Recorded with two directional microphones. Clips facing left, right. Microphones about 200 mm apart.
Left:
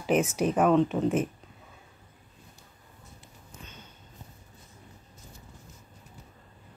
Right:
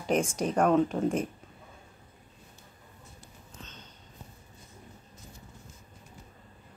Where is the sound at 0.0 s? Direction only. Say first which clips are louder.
Left 3 dB; 5° left (ahead or behind).